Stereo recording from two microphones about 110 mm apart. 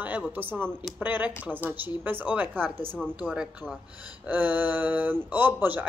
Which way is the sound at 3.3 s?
5° right (ahead or behind).